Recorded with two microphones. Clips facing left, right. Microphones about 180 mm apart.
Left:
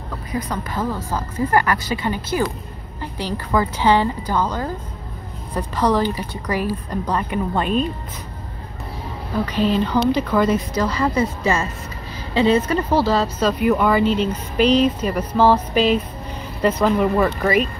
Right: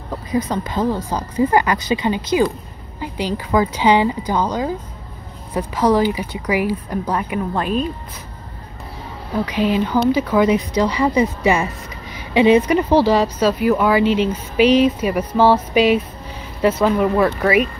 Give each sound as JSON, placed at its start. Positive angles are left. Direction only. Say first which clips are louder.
{"t": 0.3, "sound": "speech", "louder": "right 5 dB", "side_deg": -20}
{"t": 9.5, "sound": "speech", "louder": "right 1 dB", "side_deg": -10}